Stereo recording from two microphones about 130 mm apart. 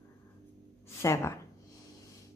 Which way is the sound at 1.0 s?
20° left (ahead or behind).